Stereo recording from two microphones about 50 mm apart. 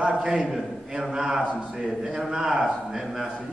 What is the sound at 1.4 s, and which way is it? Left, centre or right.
Speech, left.